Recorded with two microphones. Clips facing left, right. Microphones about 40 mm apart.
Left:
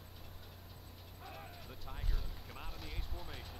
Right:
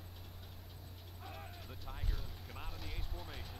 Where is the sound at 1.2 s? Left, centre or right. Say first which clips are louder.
Even; centre.